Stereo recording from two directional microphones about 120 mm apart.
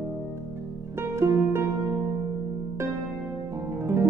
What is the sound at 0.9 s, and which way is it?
Music, 20° right (ahead or behind).